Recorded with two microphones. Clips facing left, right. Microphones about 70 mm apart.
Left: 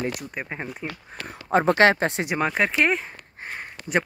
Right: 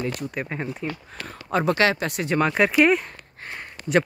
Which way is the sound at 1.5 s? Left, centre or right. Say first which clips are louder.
Left 3 dB; left.